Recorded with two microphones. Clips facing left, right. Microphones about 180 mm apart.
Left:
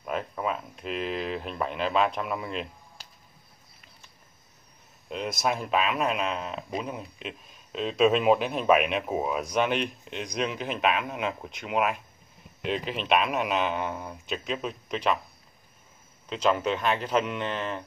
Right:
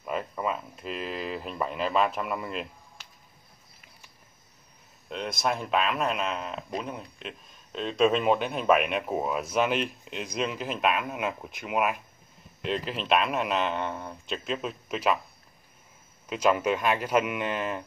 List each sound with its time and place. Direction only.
0.0 s speech: centre (ahead or behind)
3.0 s a sound: 35° left (ahead or behind)
5.1 s speech: centre (ahead or behind)
16.3 s speech: 10° right (ahead or behind)